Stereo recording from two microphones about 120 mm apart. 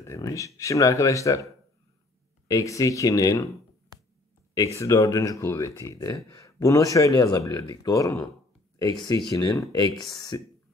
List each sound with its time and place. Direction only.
0.0 s speech: 25° left (ahead or behind)
4.7 s speech: 25° left (ahead or behind)
9.3 s speech: 30° left (ahead or behind)